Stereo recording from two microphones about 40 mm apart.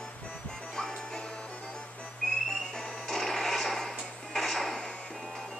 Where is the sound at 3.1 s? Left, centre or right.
Centre.